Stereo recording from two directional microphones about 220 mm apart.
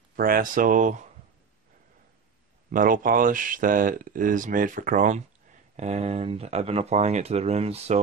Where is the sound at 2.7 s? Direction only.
40° right (ahead or behind).